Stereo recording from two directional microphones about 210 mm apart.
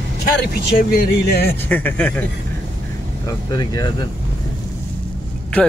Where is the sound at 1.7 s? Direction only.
10° left (ahead or behind).